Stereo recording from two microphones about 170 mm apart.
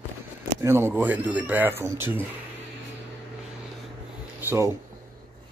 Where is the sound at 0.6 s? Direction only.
15° right (ahead or behind).